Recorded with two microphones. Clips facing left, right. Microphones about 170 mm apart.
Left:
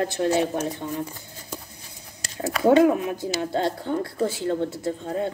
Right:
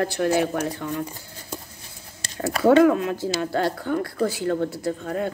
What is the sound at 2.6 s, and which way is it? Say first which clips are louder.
A woman's voice: right 1 dB; 20° left (ahead or behind).